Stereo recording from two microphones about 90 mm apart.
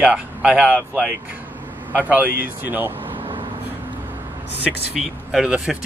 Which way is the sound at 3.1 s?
75° right (ahead or behind).